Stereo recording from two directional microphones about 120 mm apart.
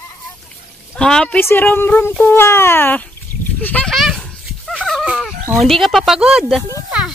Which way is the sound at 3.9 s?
Centre (ahead or behind).